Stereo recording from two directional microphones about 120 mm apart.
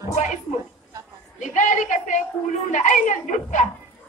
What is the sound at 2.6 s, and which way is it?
A woman's voice, 90° left.